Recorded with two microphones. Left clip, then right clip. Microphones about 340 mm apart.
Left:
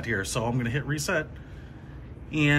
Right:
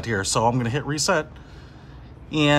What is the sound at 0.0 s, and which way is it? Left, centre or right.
Speech, centre.